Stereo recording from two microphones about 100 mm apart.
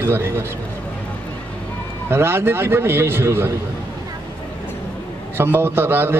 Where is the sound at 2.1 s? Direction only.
25° right (ahead or behind).